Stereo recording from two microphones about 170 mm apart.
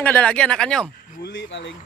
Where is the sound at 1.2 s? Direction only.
90° left.